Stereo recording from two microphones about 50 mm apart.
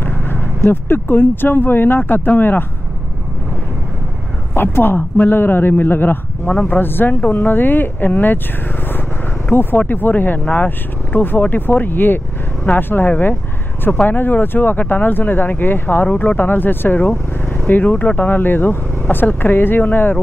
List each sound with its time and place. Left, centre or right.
0.0 s vehicle: left
0.7 s speech: left
4.6 s speech: left
6.4 s speech: left
6.7 s speech: left
9.5 s speech: left